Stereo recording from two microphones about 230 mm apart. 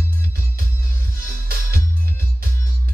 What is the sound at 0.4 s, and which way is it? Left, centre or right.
Music, right.